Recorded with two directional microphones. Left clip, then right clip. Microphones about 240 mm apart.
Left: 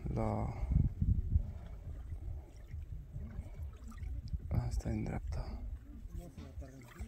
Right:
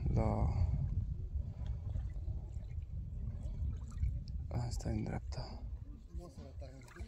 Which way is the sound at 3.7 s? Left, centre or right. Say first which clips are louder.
Right 2 dB; centre.